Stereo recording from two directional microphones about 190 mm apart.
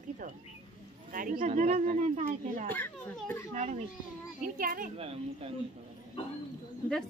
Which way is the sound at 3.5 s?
35° right (ahead or behind).